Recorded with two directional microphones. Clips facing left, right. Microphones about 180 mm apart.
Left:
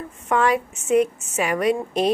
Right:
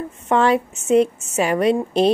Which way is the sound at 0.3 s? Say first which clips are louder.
Right 3 dB; 30° right (ahead or behind).